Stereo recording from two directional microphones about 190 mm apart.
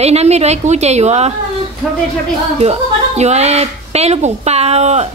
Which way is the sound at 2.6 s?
35° right (ahead or behind).